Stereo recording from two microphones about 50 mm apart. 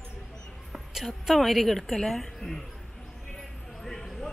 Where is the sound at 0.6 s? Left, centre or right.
Centre.